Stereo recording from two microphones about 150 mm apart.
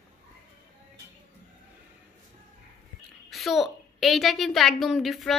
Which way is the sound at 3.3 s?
Centre (ahead or behind).